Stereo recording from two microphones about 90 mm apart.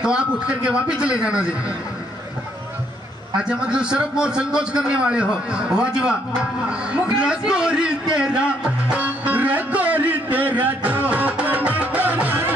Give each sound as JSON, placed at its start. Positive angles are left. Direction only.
{"t": 0.0, "sound": "a man's voice", "side_deg": -10}
{"t": 3.3, "sound": "a man's voice", "side_deg": -10}
{"t": 8.9, "sound": "music", "side_deg": -15}